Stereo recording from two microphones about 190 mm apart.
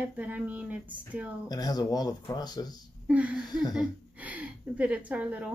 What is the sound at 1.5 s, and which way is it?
Speech, 20° left (ahead or behind).